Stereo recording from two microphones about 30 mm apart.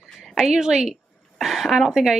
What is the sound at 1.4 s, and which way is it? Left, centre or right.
Speech, centre.